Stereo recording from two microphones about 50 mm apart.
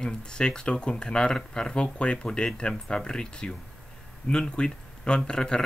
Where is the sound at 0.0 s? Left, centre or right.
Centre.